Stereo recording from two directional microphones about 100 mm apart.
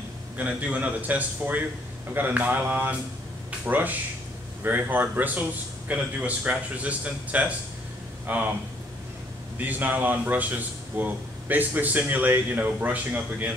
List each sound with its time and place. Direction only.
0.4 s speech: 15° right (ahead or behind)
9.7 s speech: 15° right (ahead or behind)